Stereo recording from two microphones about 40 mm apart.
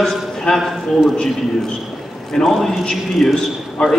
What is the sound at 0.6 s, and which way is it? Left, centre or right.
Speech, centre.